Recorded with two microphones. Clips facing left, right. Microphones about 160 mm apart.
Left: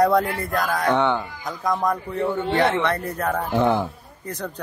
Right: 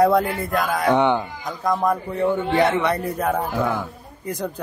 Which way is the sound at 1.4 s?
Centre (ahead or behind).